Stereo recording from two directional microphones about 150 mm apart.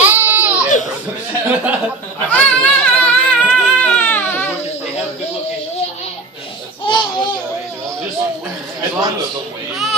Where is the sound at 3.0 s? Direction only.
10° left (ahead or behind).